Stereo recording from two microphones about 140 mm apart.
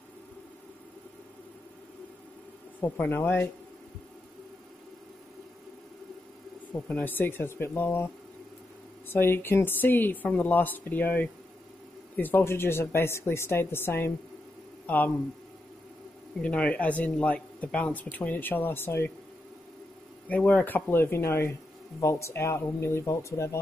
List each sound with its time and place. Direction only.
2.8 s a man's voice: 15° left (ahead or behind)
6.7 s a man's voice: 10° left (ahead or behind)
9.1 s a man's voice: 15° left (ahead or behind)
16.3 s a man's voice: 10° left (ahead or behind)
20.2 s a man's voice: 10° left (ahead or behind)